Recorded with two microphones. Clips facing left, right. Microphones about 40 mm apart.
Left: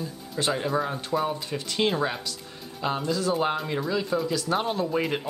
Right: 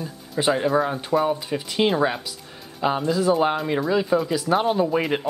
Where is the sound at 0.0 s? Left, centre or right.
Centre.